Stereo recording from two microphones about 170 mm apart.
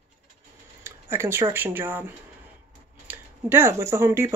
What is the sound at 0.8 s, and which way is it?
Speech, 15° right (ahead or behind).